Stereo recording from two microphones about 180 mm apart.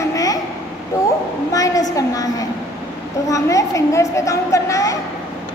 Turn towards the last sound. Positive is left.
turn(degrees=20)  # may be behind; listen again after turning